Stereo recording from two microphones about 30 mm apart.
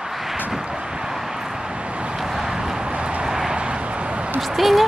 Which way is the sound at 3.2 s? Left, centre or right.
Centre.